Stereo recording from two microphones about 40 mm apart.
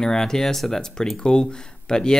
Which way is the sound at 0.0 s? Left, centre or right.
Centre.